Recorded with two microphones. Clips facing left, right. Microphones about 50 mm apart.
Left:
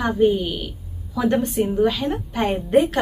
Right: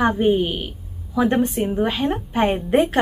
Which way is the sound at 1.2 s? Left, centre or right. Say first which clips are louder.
Right 1 dB; centre.